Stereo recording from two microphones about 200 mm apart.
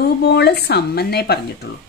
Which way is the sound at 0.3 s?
55° left (ahead or behind).